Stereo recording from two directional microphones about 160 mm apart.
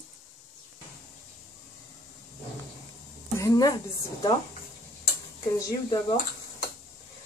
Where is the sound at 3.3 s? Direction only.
20° left (ahead or behind).